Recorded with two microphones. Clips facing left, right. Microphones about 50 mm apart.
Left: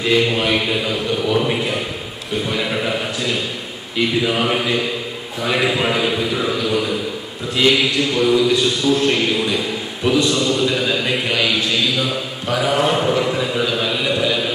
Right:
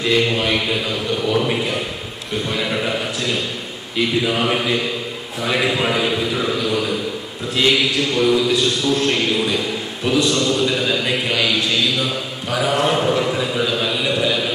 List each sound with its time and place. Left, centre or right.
0.0 s a man's voice: centre